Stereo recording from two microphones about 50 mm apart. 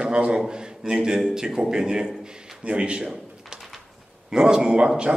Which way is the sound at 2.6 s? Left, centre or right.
Right.